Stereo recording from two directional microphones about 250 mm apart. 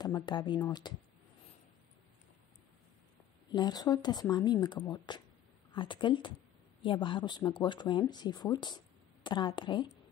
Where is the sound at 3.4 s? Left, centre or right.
Centre.